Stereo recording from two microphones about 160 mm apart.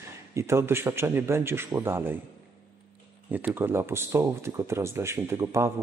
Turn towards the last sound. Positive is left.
turn(degrees=-20)  # may be behind; listen again after turning